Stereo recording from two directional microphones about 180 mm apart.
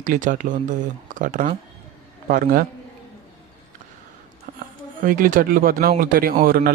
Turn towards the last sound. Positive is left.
turn(degrees=-55)  # may be behind; listen again after turning